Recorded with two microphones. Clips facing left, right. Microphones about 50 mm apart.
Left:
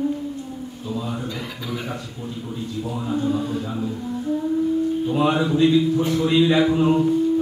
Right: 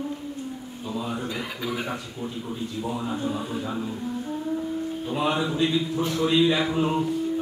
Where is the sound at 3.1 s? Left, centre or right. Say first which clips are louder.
Left 6 dB; centre.